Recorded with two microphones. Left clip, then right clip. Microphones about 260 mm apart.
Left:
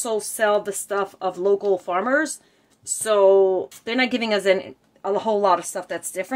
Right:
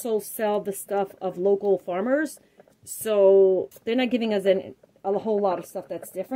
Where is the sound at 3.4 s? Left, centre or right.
Centre.